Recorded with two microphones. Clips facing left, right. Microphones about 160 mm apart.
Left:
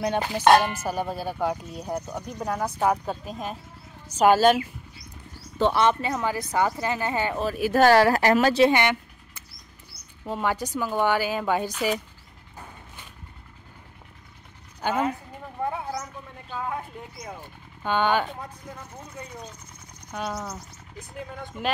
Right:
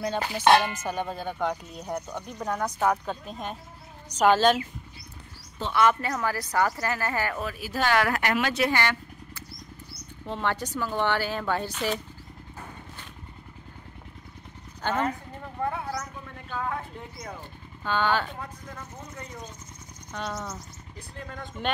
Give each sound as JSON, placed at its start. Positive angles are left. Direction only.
{"t": 0.0, "sound": "speech", "side_deg": 20}
{"t": 5.7, "sound": "speech", "side_deg": 25}
{"t": 7.5, "sound": "speech", "side_deg": 55}
{"t": 7.9, "sound": "speech", "side_deg": 35}
{"t": 8.6, "sound": "vehicle", "side_deg": 20}
{"t": 10.2, "sound": "speech", "side_deg": 10}
{"t": 14.8, "sound": "speech", "side_deg": 10}
{"t": 15.6, "sound": "a sound", "side_deg": 20}
{"t": 17.8, "sound": "speech", "side_deg": 15}
{"t": 20.1, "sound": "speech", "side_deg": 10}